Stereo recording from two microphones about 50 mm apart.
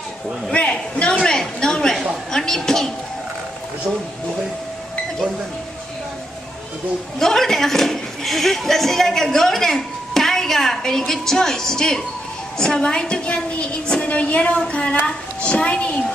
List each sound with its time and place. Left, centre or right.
0.5 s a man's voice: left
2.3 s a sound: centre
7.2 s a woman's voice: centre; by 16.0 s left